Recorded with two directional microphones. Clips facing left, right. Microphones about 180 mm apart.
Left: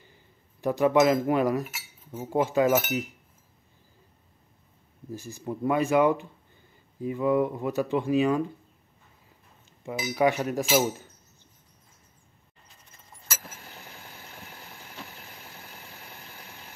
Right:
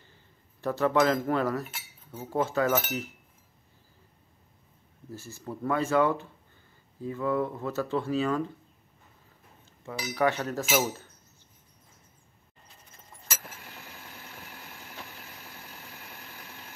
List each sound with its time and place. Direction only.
0.0 s cutlery: 15° left (ahead or behind)
5.1 s speech: 15° left (ahead or behind)
10.0 s speech: 15° left (ahead or behind)